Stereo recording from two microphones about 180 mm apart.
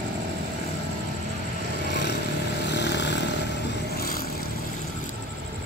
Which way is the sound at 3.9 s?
60° left (ahead or behind).